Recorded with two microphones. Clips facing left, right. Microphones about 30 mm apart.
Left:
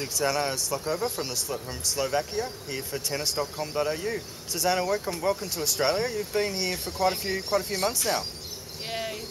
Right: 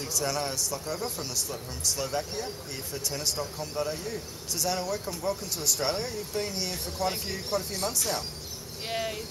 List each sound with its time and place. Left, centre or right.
0.0 s a man's voice: left
8.8 s cricket: centre